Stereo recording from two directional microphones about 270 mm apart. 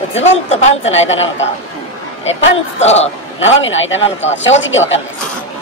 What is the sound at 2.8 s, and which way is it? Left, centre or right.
Speech, left.